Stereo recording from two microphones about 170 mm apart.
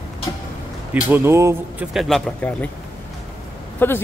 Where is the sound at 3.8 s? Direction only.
10° left (ahead or behind).